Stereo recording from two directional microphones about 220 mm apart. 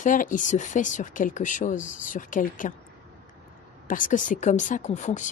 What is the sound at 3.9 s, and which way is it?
A woman's voice, 35° left (ahead or behind).